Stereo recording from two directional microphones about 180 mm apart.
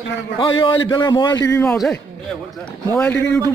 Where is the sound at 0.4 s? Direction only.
30° left (ahead or behind).